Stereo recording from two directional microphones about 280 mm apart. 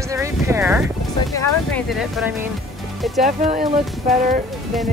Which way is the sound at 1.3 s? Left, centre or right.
Centre.